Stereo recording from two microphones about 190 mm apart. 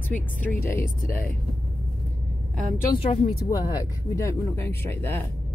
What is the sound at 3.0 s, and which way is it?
Speech, 35° left (ahead or behind).